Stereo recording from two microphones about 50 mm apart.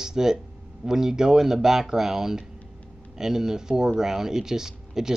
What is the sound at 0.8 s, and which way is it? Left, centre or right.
Speech, centre.